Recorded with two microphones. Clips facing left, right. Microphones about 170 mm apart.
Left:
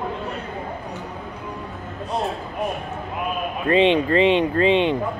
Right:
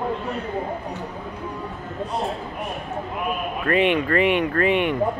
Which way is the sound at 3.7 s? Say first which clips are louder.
Left 3 dB; 25° left (ahead or behind).